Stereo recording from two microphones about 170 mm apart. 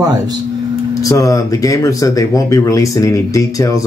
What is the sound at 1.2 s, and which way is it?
Speech, 20° left (ahead or behind).